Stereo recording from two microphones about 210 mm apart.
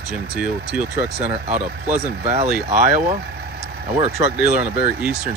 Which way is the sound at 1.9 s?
30° right (ahead or behind).